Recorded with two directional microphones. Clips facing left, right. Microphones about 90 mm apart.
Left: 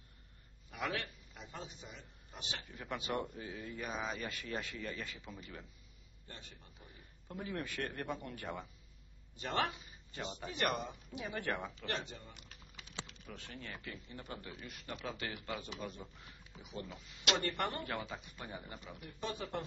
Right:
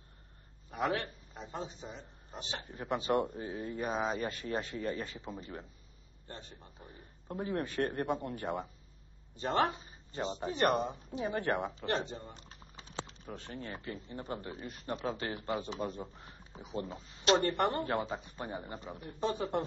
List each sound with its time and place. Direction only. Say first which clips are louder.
0.7 s speech: right 6 dB; 35° right (ahead or behind)